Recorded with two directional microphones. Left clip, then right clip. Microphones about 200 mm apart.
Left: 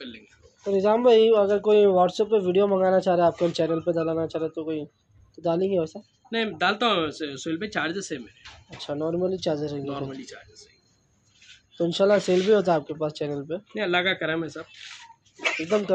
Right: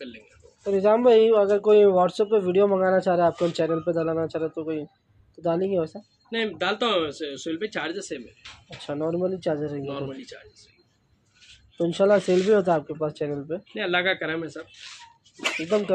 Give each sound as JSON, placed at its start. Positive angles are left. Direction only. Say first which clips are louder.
{"t": 0.7, "sound": "speech", "louder": "right 1 dB", "side_deg": -5}
{"t": 6.3, "sound": "speech", "louder": "left 1 dB", "side_deg": 40}
{"t": 8.8, "sound": "speech", "louder": "even", "side_deg": -5}
{"t": 9.8, "sound": "speech", "louder": "even", "side_deg": 50}
{"t": 11.7, "sound": "speech", "louder": "right 1 dB", "side_deg": -5}
{"t": 12.2, "sound": "speech", "louder": "even", "side_deg": 5}
{"t": 13.7, "sound": "speech", "louder": "even", "side_deg": 55}